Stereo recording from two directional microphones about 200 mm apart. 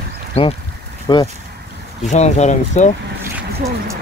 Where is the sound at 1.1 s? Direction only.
20° left (ahead or behind).